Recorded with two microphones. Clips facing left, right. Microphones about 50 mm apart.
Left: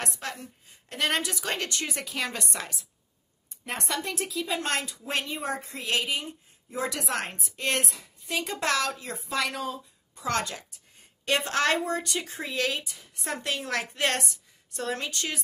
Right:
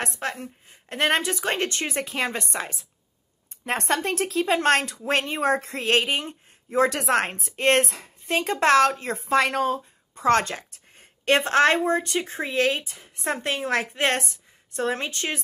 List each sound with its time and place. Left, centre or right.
0.0 s speech: right
3.6 s speech: right